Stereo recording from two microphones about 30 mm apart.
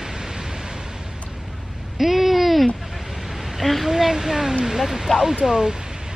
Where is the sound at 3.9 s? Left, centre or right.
Centre.